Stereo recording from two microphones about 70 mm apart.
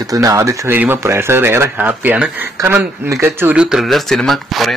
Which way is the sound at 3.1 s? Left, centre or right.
Right.